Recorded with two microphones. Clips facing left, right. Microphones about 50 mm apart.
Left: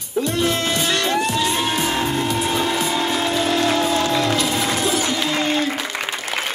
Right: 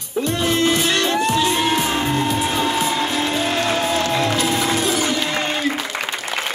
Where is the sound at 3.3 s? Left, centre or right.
Right.